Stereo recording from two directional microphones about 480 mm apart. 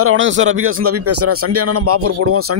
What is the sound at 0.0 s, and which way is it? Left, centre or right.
A man's voice, right.